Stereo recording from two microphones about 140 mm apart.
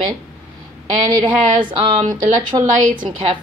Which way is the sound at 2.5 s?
35° right (ahead or behind).